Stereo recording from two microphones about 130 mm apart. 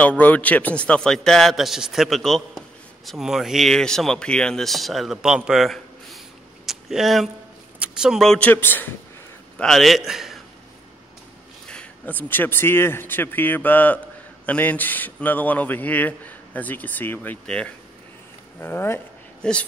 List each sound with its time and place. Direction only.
0.0 s speech: 10° left (ahead or behind)
6.6 s a sound: centre (ahead or behind)
7.8 s a man's voice: 5° right (ahead or behind); by 8.9 s 15° left (ahead or behind)
9.6 s a man's voice: centre (ahead or behind)
11.6 s a man's voice: 10° left (ahead or behind)